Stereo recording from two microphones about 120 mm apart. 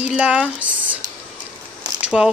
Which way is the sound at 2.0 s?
5° right (ahead or behind).